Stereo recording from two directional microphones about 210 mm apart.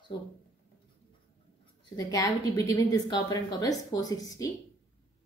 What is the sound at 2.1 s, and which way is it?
A woman's voice, 15° left (ahead or behind).